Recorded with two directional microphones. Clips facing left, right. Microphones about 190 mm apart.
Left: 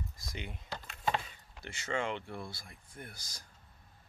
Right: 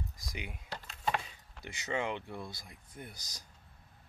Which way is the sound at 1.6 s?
15° right (ahead or behind).